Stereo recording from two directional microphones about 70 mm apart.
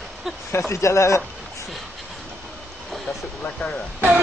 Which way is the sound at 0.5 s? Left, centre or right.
Left.